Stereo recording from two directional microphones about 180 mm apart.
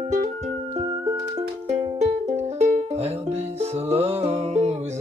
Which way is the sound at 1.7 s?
40° right (ahead or behind).